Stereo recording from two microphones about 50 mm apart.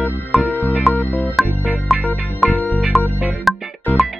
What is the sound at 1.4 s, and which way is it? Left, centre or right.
Music, right.